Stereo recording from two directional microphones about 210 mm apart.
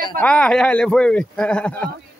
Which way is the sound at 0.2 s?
5° left (ahead or behind).